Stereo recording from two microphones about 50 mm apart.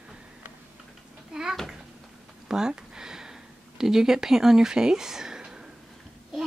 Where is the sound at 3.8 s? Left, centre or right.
Centre.